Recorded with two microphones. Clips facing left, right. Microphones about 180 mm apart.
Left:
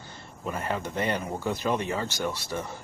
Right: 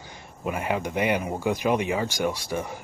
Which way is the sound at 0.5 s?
15° right (ahead or behind).